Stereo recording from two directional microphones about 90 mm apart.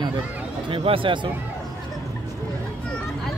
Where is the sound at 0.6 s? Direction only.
85° right; by 1.3 s 65° right (ahead or behind).